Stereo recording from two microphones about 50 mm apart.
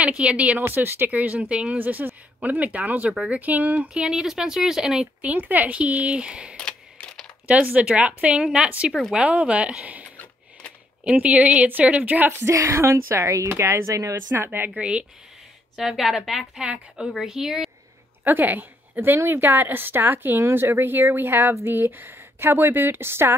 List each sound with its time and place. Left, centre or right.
0.2 s speech: right
0.6 s a woman's voice: right
1.1 s a woman's voice: right
3.9 s a woman's voice: centre
5.2 s speech: right
11.1 s a woman's voice: right
12.4 s speech: right
13.5 s speech: right
14.3 s a woman's voice: right
14.8 s speech: right
15.7 s a woman's voice: centre
18.2 s a woman's voice: right
18.9 s a woman's voice: right
20.3 s a woman's voice: right